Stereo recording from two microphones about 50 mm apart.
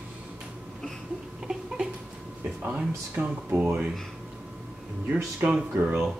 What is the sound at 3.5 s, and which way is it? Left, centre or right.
Speech, right.